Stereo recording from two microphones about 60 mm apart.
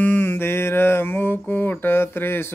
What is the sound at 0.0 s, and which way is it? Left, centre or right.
Music, left.